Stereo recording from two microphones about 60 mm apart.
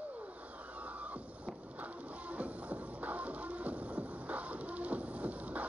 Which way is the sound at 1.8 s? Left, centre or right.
Right.